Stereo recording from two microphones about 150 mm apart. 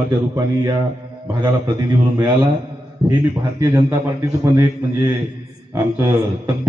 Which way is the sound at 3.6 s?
20° right (ahead or behind).